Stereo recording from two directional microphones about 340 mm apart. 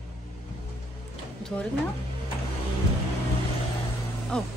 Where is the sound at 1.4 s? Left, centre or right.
Centre.